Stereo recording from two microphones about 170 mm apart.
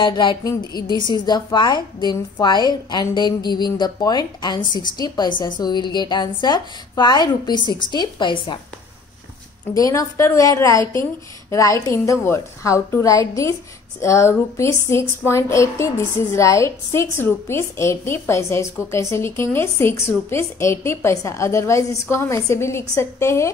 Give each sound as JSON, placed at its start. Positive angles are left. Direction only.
{"t": 0.0, "sound": "speech", "side_deg": 25}
{"t": 9.8, "sound": "speech", "side_deg": 20}